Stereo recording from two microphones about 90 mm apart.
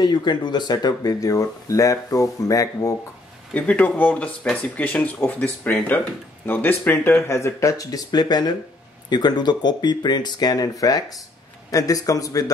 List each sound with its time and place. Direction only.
0.0 s speech: 55° left (ahead or behind); by 3.0 s 40° left (ahead or behind)
3.5 s speech: 15° left (ahead or behind); by 12.4 s 40° left (ahead or behind)